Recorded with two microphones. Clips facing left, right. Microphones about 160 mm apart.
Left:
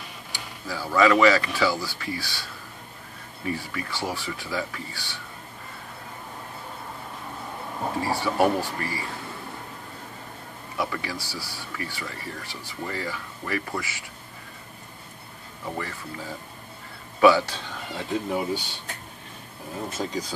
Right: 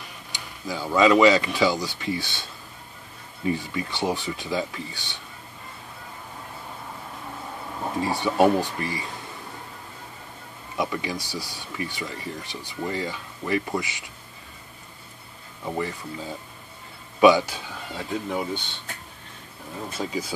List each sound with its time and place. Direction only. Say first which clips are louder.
0.3 s speech: right 2 dB; 20° right (ahead or behind)
8.0 s speech: right 3 dB; 20° right (ahead or behind)
10.8 s speech: right 2 dB; 20° right (ahead or behind)
15.7 s speech: right 4 dB; 15° right (ahead or behind)
18.1 s speech: left 2 dB; 5° left (ahead or behind)
20.0 s speech: right 2 dB; 5° right (ahead or behind)